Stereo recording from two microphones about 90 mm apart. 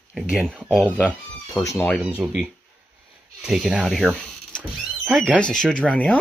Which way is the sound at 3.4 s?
5° right (ahead or behind).